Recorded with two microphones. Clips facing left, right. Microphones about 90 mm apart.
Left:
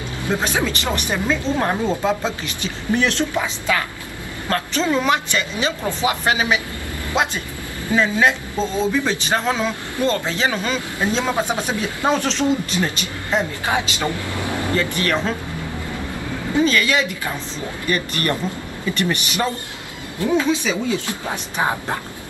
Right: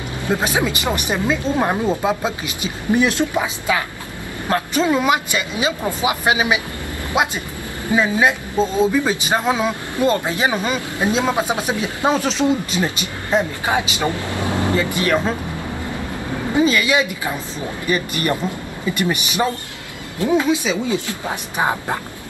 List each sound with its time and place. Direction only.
0.3 s speech: 15° right (ahead or behind)
16.5 s speech: 15° right (ahead or behind)